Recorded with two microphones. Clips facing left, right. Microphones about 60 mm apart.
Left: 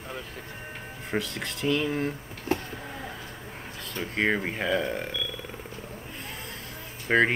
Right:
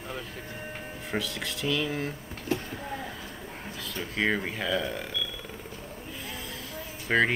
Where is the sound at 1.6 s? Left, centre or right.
Left.